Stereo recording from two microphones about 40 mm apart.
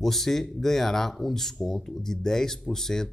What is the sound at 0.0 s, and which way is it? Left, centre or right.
Speech, centre.